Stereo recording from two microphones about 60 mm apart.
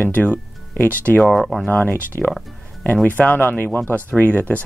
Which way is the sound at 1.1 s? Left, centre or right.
Centre.